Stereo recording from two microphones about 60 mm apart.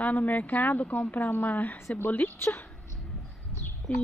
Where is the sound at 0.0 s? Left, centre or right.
Left.